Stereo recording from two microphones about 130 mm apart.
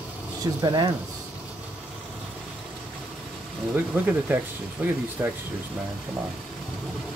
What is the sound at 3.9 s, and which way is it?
Speech, 15° right (ahead or behind).